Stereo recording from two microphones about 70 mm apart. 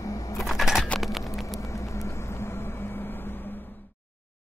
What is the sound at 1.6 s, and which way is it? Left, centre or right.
Vehicle, left.